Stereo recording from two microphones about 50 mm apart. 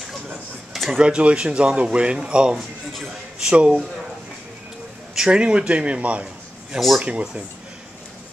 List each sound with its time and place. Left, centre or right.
0.8 s speech: centre
5.1 s speech: centre